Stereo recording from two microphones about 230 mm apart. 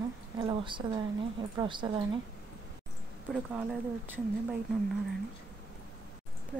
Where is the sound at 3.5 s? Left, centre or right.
Centre.